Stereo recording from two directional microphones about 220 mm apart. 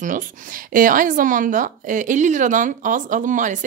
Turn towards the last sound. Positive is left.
turn(degrees=-35)  # may be behind; listen again after turning